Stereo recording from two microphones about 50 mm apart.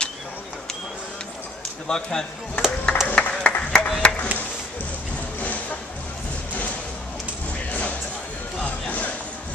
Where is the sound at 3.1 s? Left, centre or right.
Left.